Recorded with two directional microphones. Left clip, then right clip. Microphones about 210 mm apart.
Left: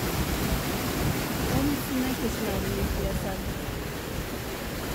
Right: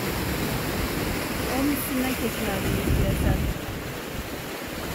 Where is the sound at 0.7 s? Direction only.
30° left (ahead or behind).